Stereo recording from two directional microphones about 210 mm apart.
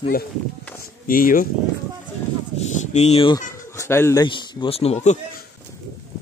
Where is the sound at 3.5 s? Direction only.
15° left (ahead or behind).